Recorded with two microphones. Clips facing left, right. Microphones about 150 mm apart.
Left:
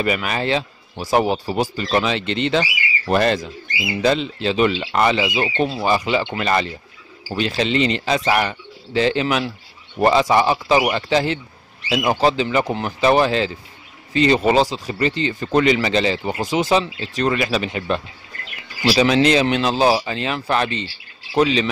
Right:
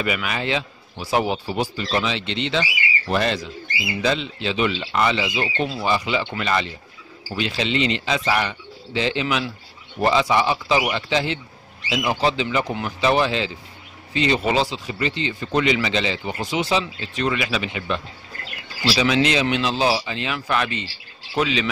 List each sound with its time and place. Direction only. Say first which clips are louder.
0.0 s a man's voice: left 4 dB; 40° left (ahead or behind)